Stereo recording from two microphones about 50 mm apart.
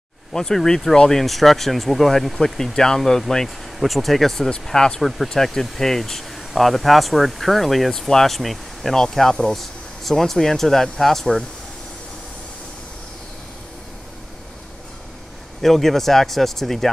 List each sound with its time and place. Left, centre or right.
0.3 s speech: centre
5.0 s speech: centre
15.6 s speech: centre